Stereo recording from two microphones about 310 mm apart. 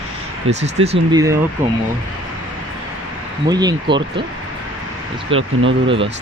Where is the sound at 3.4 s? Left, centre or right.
Centre.